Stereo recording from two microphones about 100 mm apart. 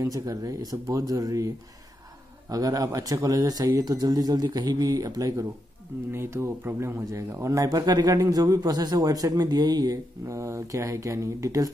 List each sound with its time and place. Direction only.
0.0 s speech: 35° right (ahead or behind)
2.5 s speech: 35° right (ahead or behind)
6.1 s speech: 25° right (ahead or behind)